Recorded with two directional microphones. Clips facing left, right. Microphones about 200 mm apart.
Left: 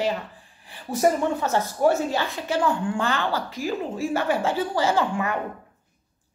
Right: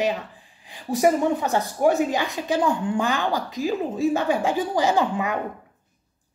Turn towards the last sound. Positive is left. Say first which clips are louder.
# right 1 dB
turn(degrees=-15)  # may be behind; listen again after turning